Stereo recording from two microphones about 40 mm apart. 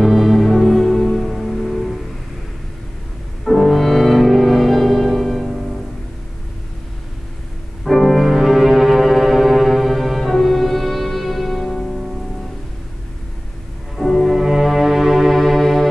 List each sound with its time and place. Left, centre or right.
0.0 s music: centre
3.4 s music: centre
7.8 s music: centre
11.9 s music: centre
13.9 s music: centre